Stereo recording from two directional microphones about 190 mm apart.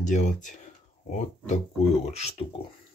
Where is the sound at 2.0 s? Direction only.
35° left (ahead or behind).